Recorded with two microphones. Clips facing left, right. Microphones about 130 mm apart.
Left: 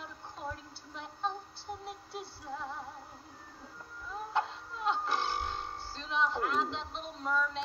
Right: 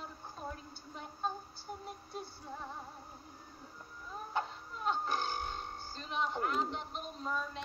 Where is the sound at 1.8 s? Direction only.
75° left (ahead or behind).